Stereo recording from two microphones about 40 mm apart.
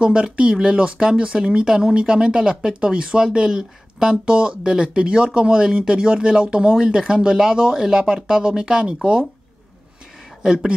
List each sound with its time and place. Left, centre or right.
0.0 s speech: right
10.4 s speech: centre